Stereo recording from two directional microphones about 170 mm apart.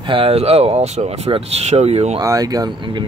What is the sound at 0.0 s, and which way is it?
Speech, 30° right (ahead or behind).